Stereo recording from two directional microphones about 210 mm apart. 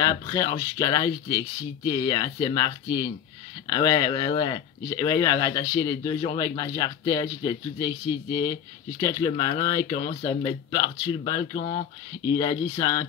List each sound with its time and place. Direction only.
0.0 s speech: 15° left (ahead or behind)